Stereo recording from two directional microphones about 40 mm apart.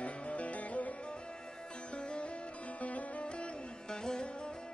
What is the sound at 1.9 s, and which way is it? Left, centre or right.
Sitar, left.